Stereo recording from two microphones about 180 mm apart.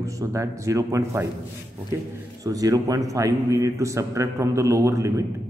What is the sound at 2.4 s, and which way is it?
Speech, 20° right (ahead or behind).